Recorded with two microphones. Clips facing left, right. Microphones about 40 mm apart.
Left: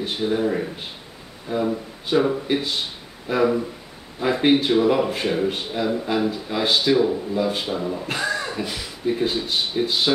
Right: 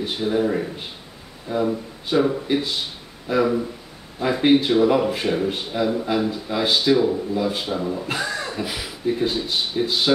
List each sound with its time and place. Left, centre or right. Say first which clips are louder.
0.0 s speech: right 1 dB; centre